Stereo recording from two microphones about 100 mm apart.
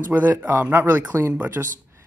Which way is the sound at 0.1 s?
20° right (ahead or behind).